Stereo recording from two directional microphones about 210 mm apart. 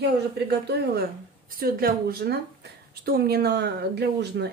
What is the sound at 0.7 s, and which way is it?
Speech, 50° right (ahead or behind).